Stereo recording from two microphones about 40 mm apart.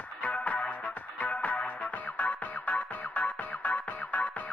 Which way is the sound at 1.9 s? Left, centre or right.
Left.